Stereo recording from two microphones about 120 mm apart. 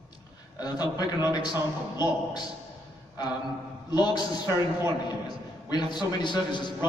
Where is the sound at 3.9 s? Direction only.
35° left (ahead or behind).